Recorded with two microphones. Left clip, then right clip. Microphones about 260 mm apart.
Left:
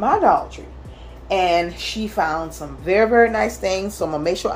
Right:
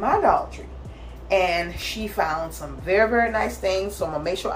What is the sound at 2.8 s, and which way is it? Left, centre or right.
Speech, left.